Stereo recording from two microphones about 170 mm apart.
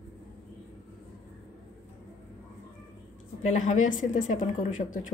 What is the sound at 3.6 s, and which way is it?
Speech, 45° left (ahead or behind).